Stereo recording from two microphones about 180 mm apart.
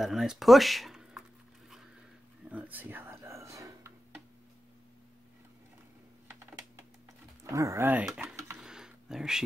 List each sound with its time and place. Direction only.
0.0 s speech: centre (ahead or behind)
2.5 s whispering: 10° right (ahead or behind)
7.5 s speech: 15° right (ahead or behind)
8.5 s a sound: 5° right (ahead or behind)